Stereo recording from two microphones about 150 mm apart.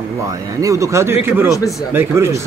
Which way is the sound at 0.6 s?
20° right (ahead or behind).